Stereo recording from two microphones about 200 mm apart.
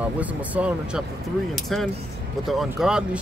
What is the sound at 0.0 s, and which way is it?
Speech, 5° right (ahead or behind).